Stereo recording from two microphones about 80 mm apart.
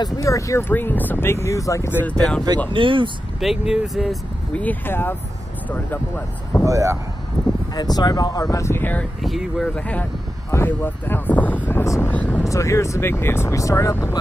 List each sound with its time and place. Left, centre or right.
0.0 s speech: left
0.6 s speech: left
2.1 s speech: centre
2.7 s speech: right
3.3 s speech: centre
4.6 s speech: left
6.6 s speech: right
7.7 s speech: left
8.7 s speech: left
9.2 s speech: centre
9.8 s speech: centre
10.5 s speech: left
12.4 s speech: left